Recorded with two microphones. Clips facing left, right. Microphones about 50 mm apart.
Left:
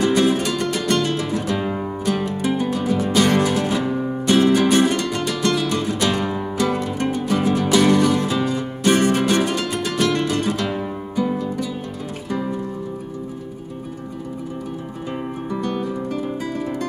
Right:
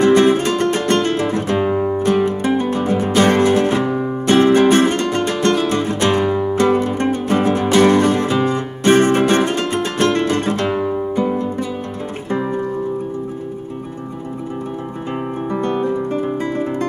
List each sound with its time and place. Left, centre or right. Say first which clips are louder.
0.0 s music: right 5 dB; right
1.6 s music: right 7 dB; centre
2.2 s music: right 4 dB; right
3.8 s music: right 3 dB; centre
4.3 s music: right 4 dB; right
6.2 s music: right 7 dB; centre
6.8 s music: right 4 dB; right
10.7 s music: right 6 dB; centre
11.3 s music: right 3 dB; right
15.5 s guitar: right 6 dB; right